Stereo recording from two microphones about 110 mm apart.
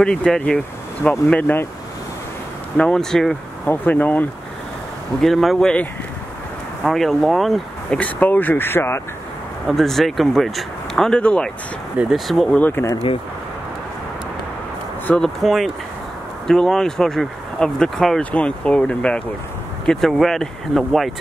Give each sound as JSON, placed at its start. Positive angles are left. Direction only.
{"t": 0.0, "sound": "speech", "side_deg": 5}
{"t": 1.3, "sound": "speech", "side_deg": 20}
{"t": 2.8, "sound": "speech", "side_deg": 5}
{"t": 3.6, "sound": "speech", "side_deg": 15}
{"t": 5.2, "sound": "speech", "side_deg": 0}
{"t": 8.0, "sound": "speech", "side_deg": 15}
{"t": 9.7, "sound": "speech", "side_deg": 0}
{"t": 12.0, "sound": "speech", "side_deg": 0}
{"t": 12.5, "sound": "speech", "side_deg": 15}
{"t": 15.0, "sound": "speech", "side_deg": 5}